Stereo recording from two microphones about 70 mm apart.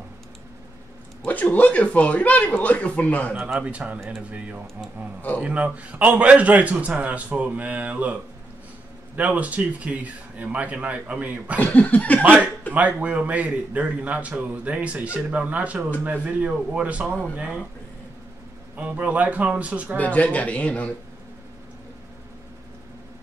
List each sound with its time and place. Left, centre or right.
1.2 s speech: left
3.5 s a man's voice: centre
11.6 s speech: left
12.2 s a man's voice: right
18.8 s a man's voice: right
20.0 s speech: left